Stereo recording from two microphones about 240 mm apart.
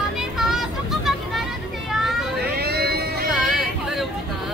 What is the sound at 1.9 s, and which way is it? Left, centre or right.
Vehicle, centre.